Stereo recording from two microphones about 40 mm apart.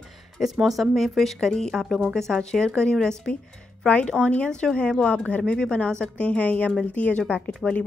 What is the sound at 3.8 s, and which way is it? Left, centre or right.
A woman's voice, left.